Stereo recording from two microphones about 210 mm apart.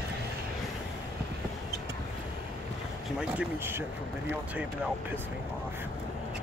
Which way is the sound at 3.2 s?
10° right (ahead or behind).